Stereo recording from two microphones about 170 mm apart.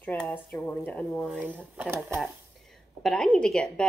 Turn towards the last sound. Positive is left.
turn(degrees=5)  # may be behind; listen again after turning